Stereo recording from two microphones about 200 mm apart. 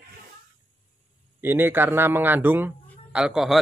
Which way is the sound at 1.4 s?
10° right (ahead or behind).